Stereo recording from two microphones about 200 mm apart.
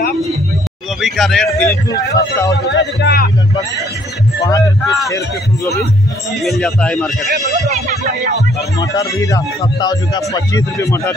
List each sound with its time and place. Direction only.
1.0 s a man's voice: centre (ahead or behind)
1.7 s a man's voice: 15° left (ahead or behind)
2.7 s speech: 55° left (ahead or behind)
4.4 s a man's voice: 15° left (ahead or behind)
6.4 s a man's voice: centre (ahead or behind)
8.7 s a man's voice: 15° left (ahead or behind)